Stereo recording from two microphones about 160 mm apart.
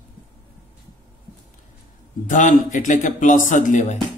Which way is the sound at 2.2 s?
50° left (ahead or behind).